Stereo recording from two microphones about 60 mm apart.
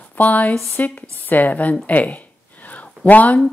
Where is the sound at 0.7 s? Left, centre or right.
Left.